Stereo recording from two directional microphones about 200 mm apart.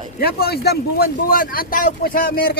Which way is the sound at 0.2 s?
50° left (ahead or behind).